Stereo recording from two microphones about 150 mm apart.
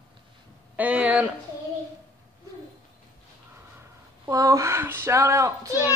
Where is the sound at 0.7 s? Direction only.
10° right (ahead or behind).